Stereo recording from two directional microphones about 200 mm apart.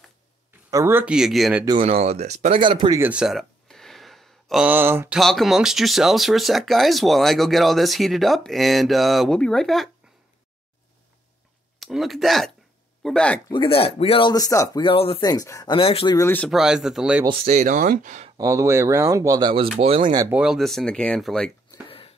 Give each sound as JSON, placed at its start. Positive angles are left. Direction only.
{"t": 0.7, "sound": "speech", "side_deg": -15}
{"t": 1.8, "sound": "speech", "side_deg": -30}
{"t": 3.0, "sound": "a sound", "side_deg": -5}
{"t": 5.2, "sound": "speech", "side_deg": 0}
{"t": 11.8, "sound": "speech", "side_deg": 0}
{"t": 13.5, "sound": "speech", "side_deg": 25}
{"t": 16.2, "sound": "speech", "side_deg": 10}
{"t": 16.4, "sound": "speech", "side_deg": 0}
{"t": 17.2, "sound": "speech", "side_deg": -30}
{"t": 18.4, "sound": "speech", "side_deg": -15}
{"t": 20.2, "sound": "speech", "side_deg": -5}
{"t": 21.8, "sound": "a sound", "side_deg": 25}